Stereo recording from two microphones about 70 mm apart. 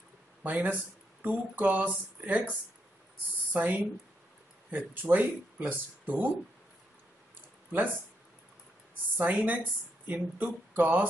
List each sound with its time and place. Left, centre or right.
0.4 s a woman's voice: right
3.5 s a woman's voice: right
9.1 s a woman's voice: right